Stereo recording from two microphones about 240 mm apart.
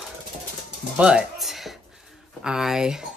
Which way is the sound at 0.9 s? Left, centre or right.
Centre.